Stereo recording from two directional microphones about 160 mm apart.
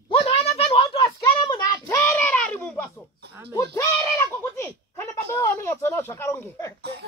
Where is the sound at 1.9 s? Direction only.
15° left (ahead or behind).